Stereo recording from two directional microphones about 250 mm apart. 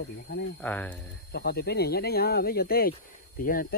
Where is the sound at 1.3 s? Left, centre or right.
Left.